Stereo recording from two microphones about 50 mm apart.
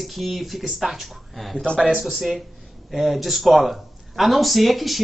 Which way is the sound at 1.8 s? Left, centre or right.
Centre.